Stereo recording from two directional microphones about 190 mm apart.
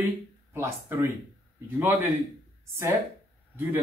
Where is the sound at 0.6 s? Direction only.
15° right (ahead or behind).